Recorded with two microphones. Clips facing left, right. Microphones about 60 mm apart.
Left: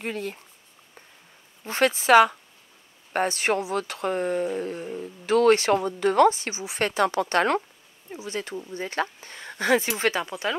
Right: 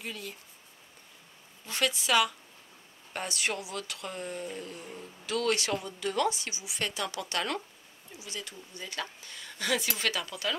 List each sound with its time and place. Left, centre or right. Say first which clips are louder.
0.0 s speech: left 9 dB; left
1.6 s speech: left 8 dB; left